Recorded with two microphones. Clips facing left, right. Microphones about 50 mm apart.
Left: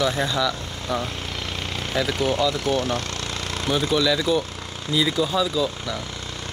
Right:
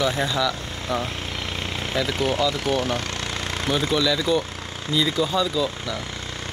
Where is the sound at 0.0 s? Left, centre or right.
Centre.